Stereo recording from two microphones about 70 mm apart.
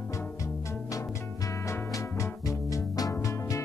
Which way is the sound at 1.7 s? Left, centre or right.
Left.